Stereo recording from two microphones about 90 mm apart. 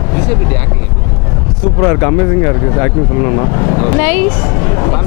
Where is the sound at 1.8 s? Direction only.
25° left (ahead or behind).